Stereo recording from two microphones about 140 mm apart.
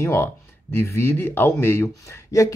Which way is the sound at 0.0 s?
15° left (ahead or behind).